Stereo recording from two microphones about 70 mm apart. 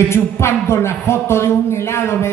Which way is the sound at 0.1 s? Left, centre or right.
Left.